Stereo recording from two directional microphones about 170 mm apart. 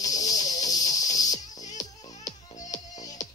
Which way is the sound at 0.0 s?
20° left (ahead or behind).